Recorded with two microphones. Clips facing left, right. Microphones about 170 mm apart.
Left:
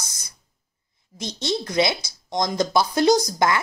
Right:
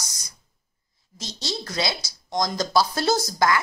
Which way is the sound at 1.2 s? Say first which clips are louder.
Left 6 dB; 20° left (ahead or behind).